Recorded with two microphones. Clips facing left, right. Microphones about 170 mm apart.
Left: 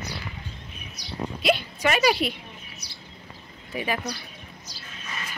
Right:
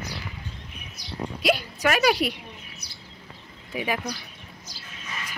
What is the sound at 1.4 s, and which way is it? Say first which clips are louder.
Speech: even; 5° right (ahead or behind).